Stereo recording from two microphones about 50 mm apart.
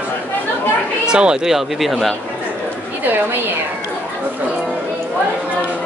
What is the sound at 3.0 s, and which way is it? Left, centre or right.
Speech, right.